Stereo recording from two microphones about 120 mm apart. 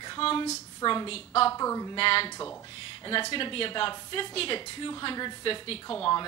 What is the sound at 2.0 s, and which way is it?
A woman's voice, 50° left (ahead or behind).